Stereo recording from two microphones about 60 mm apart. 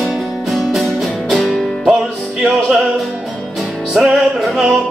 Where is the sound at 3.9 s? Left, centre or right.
Centre.